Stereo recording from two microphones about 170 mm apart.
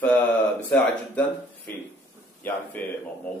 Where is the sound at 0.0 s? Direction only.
10° left (ahead or behind).